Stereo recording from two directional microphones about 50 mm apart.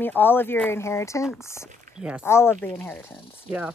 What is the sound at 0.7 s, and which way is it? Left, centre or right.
Speech, left.